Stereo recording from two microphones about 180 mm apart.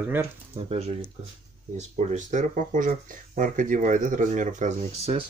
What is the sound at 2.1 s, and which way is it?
Speech, 45° right (ahead or behind).